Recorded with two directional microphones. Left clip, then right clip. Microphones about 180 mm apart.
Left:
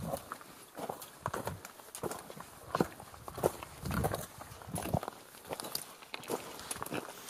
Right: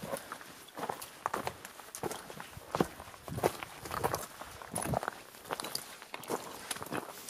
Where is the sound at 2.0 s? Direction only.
30° right (ahead or behind).